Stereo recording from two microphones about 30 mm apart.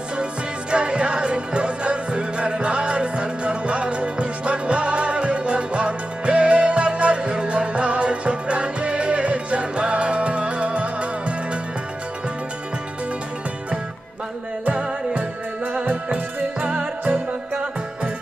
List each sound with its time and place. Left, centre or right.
0.2 s music: right
7.5 s music: right
15.7 s music: right
16.6 s music: right